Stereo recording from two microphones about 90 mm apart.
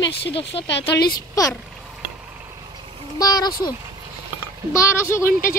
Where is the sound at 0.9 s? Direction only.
40° left (ahead or behind).